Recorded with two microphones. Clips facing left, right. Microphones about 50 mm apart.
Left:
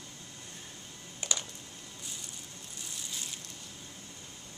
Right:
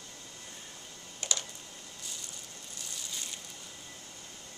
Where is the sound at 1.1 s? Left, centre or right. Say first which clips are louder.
Even; centre.